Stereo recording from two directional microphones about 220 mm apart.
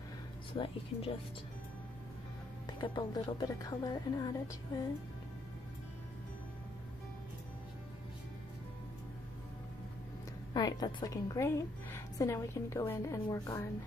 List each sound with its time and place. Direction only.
0.5 s speech: 25° left (ahead or behind)
2.6 s speech: 20° left (ahead or behind)
10.5 s a woman's voice: 20° left (ahead or behind)